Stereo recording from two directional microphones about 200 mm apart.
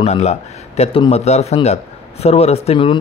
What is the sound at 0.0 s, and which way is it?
Speech, 35° left (ahead or behind).